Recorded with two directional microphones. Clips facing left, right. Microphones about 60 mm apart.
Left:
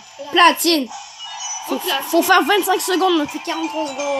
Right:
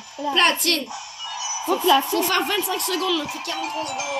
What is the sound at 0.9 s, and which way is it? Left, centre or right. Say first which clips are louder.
Music: even; centre.